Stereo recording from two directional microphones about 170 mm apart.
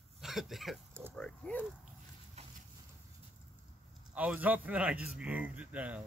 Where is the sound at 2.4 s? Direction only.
40° right (ahead or behind).